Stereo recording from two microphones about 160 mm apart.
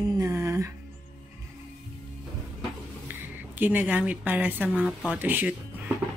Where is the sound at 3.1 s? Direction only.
10° right (ahead or behind).